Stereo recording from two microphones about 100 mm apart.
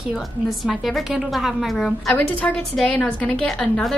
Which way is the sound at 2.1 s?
15° left (ahead or behind).